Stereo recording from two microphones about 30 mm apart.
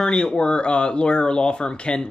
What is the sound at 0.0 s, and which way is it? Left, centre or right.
Speech, left.